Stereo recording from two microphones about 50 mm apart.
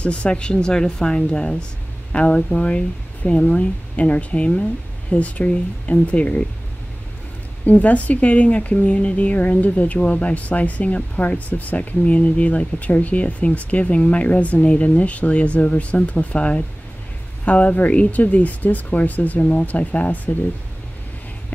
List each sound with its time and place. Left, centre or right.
0.0 s a woman's voice: left
7.6 s a woman's voice: left